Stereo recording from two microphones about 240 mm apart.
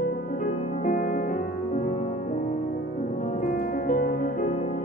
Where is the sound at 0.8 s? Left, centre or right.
Left.